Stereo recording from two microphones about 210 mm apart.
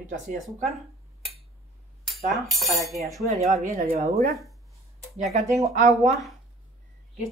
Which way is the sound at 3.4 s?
35° right (ahead or behind).